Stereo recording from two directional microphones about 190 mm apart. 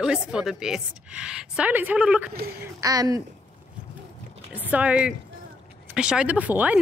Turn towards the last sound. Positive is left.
turn(degrees=-10)  # may be behind; listen again after turning